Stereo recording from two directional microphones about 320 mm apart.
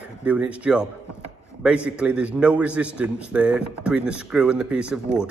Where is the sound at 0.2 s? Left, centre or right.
Centre.